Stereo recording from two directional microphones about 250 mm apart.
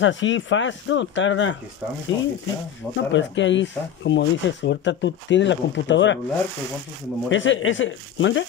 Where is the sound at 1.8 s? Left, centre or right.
Centre.